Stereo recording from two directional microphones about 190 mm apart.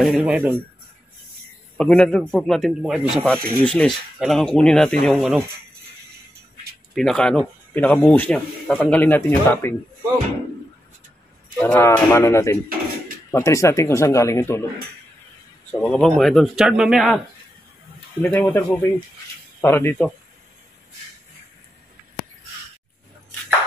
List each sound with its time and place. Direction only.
0.0 s speech: 5° right (ahead or behind)
1.8 s speech: 5° left (ahead or behind)
3.3 s speech: 5° left (ahead or behind)
7.0 s speech: 5° left (ahead or behind)
11.5 s speech: 10° left (ahead or behind)
15.7 s speech: 5° left (ahead or behind)
18.2 s speech: 10° left (ahead or behind)